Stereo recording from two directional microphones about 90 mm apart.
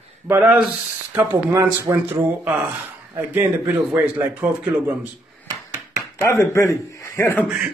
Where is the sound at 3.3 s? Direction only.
20° right (ahead or behind).